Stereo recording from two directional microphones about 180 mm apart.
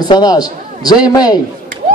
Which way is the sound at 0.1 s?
20° left (ahead or behind).